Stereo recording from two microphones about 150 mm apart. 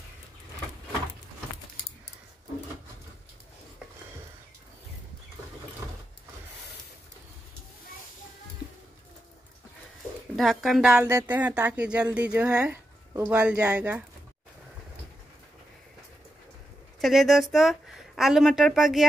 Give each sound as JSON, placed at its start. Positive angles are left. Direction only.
{"t": 10.3, "sound": "speech", "side_deg": 0}
{"t": 17.0, "sound": "speech", "side_deg": 0}